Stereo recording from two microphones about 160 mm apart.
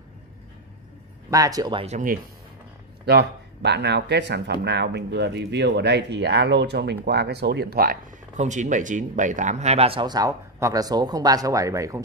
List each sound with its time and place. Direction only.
1.3 s speech: 20° right (ahead or behind)
3.1 s speech: 90° right; by 8.0 s 70° right (ahead or behind)
8.4 s speech: 50° right (ahead or behind); by 12.0 s 20° right (ahead or behind)